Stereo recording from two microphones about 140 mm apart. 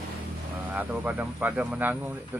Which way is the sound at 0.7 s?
10° right (ahead or behind).